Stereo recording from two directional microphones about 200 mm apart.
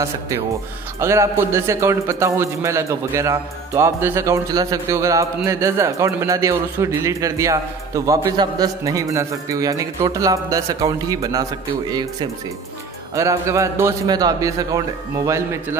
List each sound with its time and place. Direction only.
0.9 s a man's voice: 15° right (ahead or behind)